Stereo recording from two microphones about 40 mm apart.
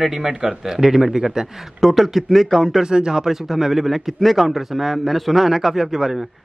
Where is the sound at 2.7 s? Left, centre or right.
Centre.